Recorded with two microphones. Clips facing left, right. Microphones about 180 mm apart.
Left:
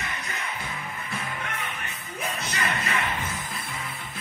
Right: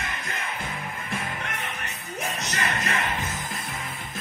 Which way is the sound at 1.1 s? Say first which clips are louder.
Right 1 dB; 45° right (ahead or behind).